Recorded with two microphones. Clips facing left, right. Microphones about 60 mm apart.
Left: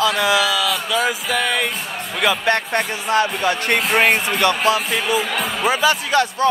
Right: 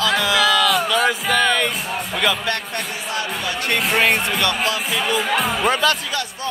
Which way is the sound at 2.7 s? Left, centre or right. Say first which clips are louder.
Left 7 dB; left.